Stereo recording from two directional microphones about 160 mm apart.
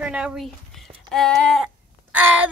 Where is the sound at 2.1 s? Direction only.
10° right (ahead or behind).